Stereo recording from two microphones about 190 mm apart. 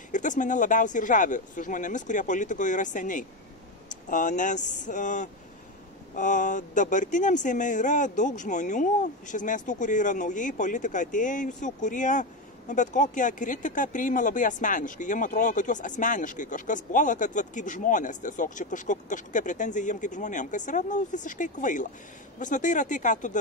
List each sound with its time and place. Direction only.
0.1 s speech: 40° left (ahead or behind)